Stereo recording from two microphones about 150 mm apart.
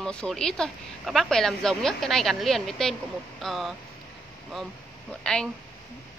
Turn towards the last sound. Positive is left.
turn(degrees=5)  # may be behind; listen again after turning